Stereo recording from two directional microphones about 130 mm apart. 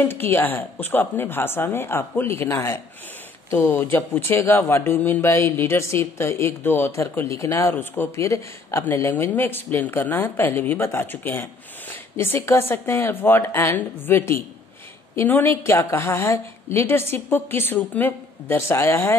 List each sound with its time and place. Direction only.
0.0 s speech: 15° left (ahead or behind)